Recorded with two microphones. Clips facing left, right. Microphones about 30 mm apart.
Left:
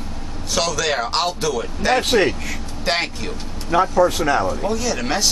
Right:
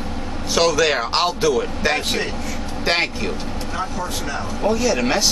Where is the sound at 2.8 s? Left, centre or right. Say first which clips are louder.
Right 2 dB; centre.